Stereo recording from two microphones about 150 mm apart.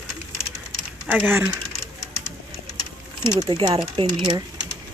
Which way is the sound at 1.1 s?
10° right (ahead or behind).